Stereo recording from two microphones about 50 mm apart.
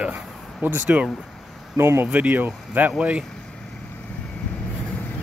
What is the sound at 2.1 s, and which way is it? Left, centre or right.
Speech, right.